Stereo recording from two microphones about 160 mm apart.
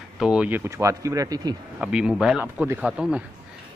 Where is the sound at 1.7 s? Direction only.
5° right (ahead or behind).